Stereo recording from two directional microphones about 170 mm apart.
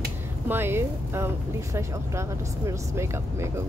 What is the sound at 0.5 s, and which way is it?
Speech, 15° right (ahead or behind).